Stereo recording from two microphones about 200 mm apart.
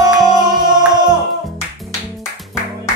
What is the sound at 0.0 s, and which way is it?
Music, 20° right (ahead or behind).